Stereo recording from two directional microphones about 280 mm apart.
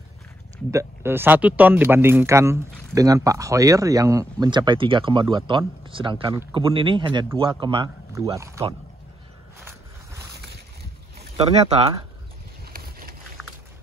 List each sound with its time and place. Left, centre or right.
0.7 s speech: centre
11.3 s speech: right